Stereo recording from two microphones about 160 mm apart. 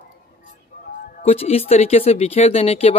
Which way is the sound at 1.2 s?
40° left (ahead or behind).